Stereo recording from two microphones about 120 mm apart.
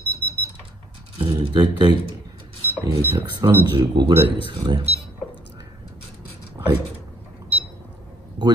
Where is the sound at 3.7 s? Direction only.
40° right (ahead or behind).